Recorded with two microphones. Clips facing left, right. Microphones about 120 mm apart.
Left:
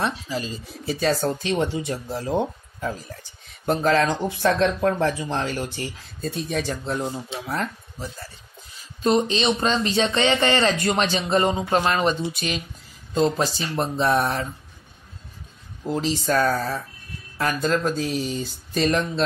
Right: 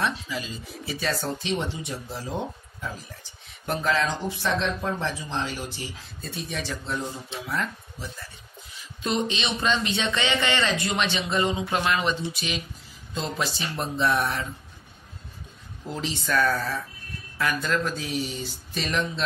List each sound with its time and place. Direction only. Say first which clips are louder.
0.0 s speech: left 3 dB; 40° left (ahead or behind)
3.6 s speech: left 5 dB; 40° left (ahead or behind)
6.2 s speech: left 7 dB; 40° left (ahead or behind)
15.9 s speech: left 5 dB; 35° left (ahead or behind)